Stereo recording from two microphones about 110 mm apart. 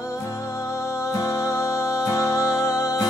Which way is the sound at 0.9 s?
25° left (ahead or behind).